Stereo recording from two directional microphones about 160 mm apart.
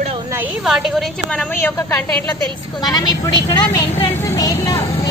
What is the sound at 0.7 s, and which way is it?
A woman's voice, 5° right (ahead or behind).